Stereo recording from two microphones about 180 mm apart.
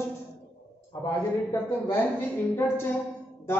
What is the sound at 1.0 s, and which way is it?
A woman's voice, 20° left (ahead or behind).